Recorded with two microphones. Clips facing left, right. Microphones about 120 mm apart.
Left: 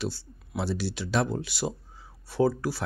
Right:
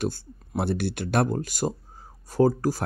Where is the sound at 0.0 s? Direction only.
50° right (ahead or behind).